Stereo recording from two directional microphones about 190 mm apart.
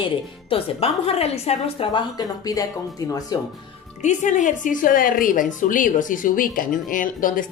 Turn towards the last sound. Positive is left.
turn(degrees=45)  # may be behind; listen again after turning